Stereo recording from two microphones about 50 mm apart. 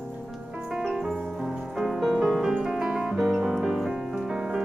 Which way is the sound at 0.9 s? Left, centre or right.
Centre.